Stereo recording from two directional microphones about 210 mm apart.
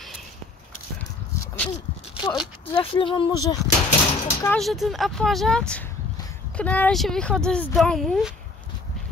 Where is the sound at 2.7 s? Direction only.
25° left (ahead or behind).